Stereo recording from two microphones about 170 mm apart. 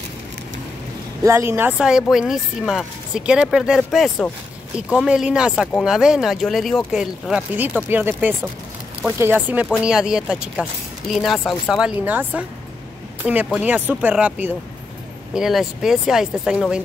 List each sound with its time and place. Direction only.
1.2 s speech: 15° right (ahead or behind)